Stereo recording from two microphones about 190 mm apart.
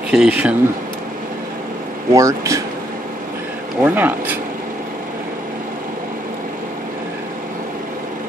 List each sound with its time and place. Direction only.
0.1 s speech: 5° right (ahead or behind)
2.1 s speech: 15° right (ahead or behind)
3.8 s speech: 10° right (ahead or behind)